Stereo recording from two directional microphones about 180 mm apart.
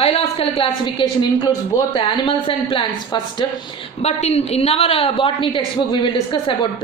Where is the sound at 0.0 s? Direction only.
30° left (ahead or behind).